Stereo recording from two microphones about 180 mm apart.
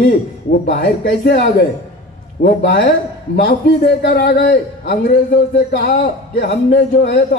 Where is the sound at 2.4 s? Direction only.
65° left (ahead or behind).